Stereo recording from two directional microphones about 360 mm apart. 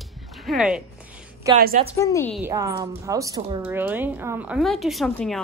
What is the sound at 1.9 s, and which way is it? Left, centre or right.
Speech, centre.